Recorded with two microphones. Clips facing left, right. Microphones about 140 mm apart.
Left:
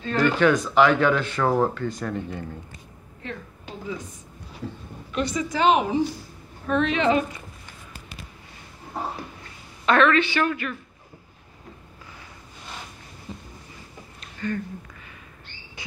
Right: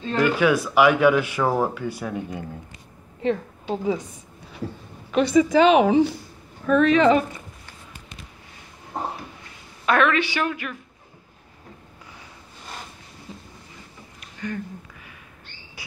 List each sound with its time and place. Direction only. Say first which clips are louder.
0.2 s speech: even; 10° right (ahead or behind)
3.3 s a woman's voice: right 13 dB; 90° right
5.1 s a woman's voice: right 9 dB; 85° right
6.7 s a woman's voice: right 5 dB; 45° right (ahead or behind)
9.8 s speech: left 1 dB; 10° right (ahead or behind)
14.2 s a sound: left 2 dB; 15° right (ahead or behind)